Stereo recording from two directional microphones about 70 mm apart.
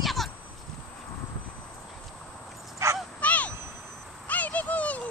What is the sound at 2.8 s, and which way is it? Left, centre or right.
Dog, right.